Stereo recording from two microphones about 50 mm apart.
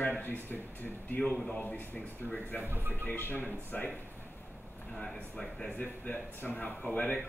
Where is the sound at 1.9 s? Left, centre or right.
Left.